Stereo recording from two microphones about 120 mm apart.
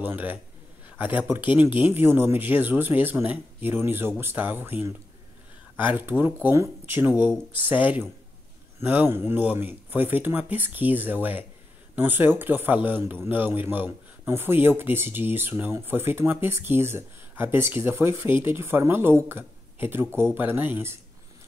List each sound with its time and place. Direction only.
0.0 s speech: 15° right (ahead or behind)
5.8 s a man's voice: 15° right (ahead or behind)